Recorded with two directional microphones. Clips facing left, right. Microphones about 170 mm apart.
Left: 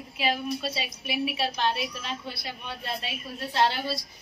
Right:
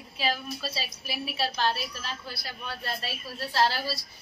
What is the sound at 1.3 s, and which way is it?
A man's voice, centre (ahead or behind).